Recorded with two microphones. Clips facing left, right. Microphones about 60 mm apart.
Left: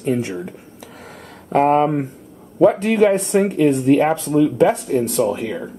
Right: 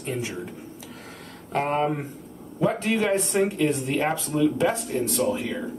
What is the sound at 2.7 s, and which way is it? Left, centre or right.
Speech, centre.